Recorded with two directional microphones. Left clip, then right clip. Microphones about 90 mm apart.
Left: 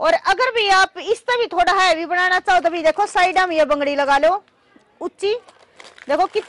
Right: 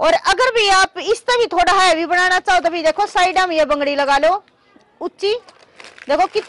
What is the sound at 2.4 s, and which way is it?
Speech, 30° left (ahead or behind).